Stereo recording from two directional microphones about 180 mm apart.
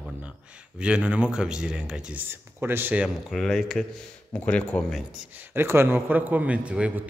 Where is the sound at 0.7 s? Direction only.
5° right (ahead or behind).